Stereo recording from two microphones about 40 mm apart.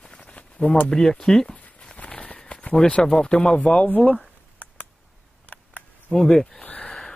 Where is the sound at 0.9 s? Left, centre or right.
Centre.